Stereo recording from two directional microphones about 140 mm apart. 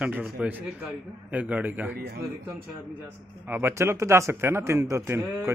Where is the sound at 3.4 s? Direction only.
15° right (ahead or behind).